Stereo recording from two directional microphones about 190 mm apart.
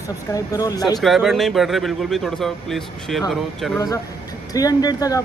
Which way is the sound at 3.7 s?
15° left (ahead or behind).